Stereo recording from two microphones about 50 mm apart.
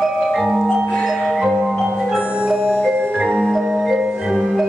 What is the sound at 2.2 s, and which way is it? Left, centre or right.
Music, right.